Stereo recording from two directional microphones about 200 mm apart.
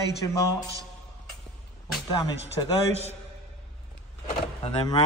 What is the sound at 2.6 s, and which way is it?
Speech, 20° left (ahead or behind).